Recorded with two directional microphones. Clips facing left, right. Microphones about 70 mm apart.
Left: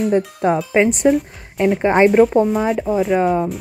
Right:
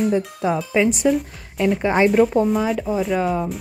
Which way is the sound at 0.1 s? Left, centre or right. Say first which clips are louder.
Left 4 dB; left.